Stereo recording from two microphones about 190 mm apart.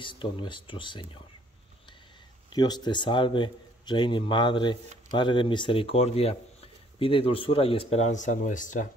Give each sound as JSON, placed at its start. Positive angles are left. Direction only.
{"t": 0.0, "sound": "speech", "side_deg": 25}
{"t": 2.5, "sound": "speech", "side_deg": 20}